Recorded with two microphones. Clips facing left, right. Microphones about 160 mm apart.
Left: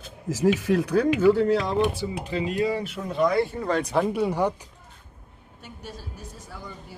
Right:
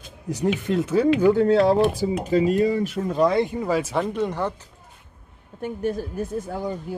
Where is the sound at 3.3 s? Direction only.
20° right (ahead or behind); by 4.6 s 10° left (ahead or behind).